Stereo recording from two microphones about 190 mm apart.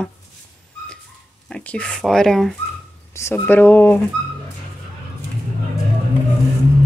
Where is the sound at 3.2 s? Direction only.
15° left (ahead or behind).